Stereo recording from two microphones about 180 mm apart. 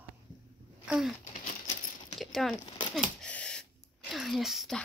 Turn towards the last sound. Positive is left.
turn(degrees=0)  # may be behind; listen again after turning